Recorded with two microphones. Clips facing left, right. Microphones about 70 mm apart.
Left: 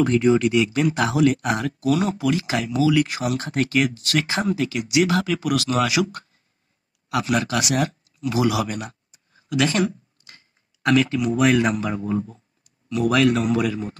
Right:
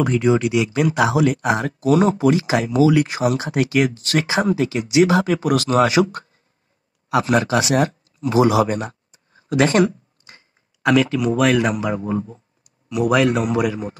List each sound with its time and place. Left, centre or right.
0.0 s speech: right
7.1 s speech: right
10.8 s speech: centre
11.9 s speech: right
12.6 s a man's voice: centre